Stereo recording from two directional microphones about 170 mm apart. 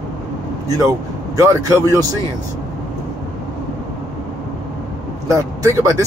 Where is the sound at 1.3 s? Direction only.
20° right (ahead or behind).